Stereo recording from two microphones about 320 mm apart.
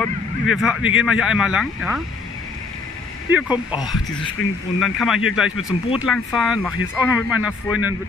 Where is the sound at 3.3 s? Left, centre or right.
Centre.